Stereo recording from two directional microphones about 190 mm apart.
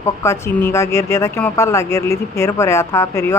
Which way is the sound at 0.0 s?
15° left (ahead or behind).